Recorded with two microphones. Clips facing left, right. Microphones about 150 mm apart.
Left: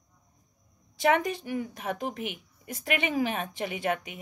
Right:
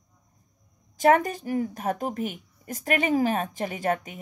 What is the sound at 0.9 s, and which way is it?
A woman's voice, 45° right (ahead or behind).